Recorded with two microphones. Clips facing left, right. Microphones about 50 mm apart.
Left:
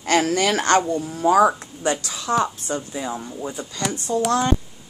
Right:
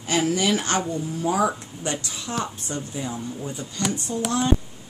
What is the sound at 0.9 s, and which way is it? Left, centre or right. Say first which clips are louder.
Speech: left 7 dB; left.